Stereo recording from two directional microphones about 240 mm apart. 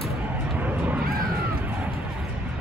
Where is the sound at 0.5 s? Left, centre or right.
Centre.